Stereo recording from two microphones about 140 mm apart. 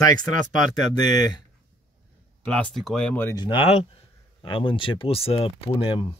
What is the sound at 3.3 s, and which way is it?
Speech, 35° left (ahead or behind).